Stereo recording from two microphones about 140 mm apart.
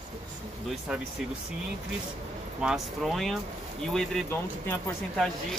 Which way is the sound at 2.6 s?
Centre (ahead or behind).